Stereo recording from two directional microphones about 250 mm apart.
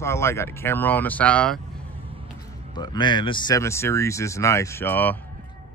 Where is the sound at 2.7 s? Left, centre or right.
Centre.